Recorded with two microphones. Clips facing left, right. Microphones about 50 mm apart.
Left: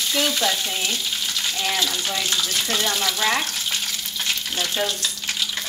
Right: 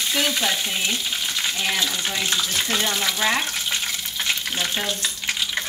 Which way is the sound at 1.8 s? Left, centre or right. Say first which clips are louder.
Even; right.